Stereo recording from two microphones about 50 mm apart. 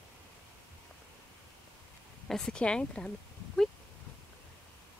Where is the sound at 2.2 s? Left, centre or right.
Centre.